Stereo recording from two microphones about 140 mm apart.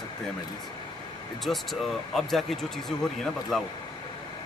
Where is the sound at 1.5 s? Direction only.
Centre (ahead or behind).